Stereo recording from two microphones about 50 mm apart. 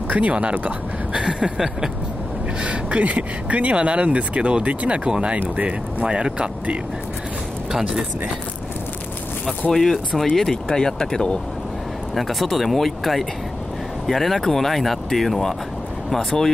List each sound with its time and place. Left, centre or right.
0.1 s speech: right
2.6 s speech: right
9.7 s speech: centre
12.2 s speech: centre